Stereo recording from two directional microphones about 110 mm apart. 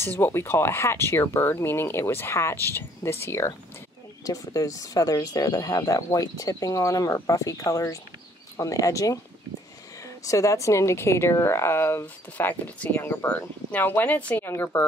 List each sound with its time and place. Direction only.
0.0 s speech: 20° left (ahead or behind)
10.2 s speech: 30° left (ahead or behind)